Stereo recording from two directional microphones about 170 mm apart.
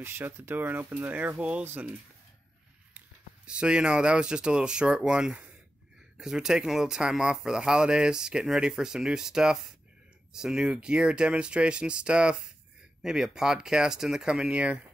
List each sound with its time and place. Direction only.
0.0 s speech: 15° right (ahead or behind)
3.4 s speech: 5° right (ahead or behind)